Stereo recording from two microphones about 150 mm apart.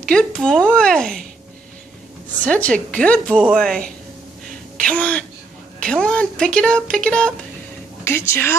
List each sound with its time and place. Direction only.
0.0 s speech: 5° left (ahead or behind)
2.4 s a woman's voice: 10° left (ahead or behind)